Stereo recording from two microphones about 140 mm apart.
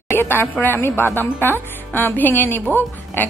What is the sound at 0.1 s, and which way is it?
A woman's voice, 15° left (ahead or behind).